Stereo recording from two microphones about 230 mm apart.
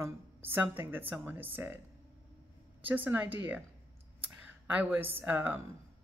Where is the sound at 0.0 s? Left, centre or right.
Centre.